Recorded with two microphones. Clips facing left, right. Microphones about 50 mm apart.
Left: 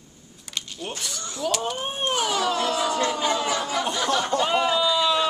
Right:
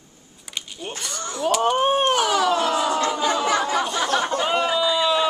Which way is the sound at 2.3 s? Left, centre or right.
Right.